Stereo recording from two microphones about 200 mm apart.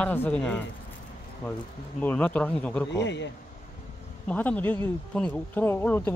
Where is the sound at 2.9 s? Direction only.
60° left (ahead or behind).